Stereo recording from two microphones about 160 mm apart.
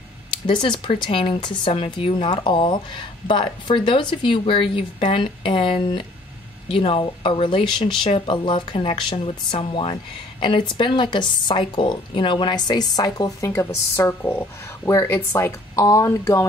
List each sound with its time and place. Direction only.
0.5 s speech: 30° left (ahead or behind)